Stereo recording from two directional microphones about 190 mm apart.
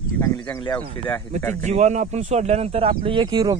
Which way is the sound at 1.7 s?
35° right (ahead or behind).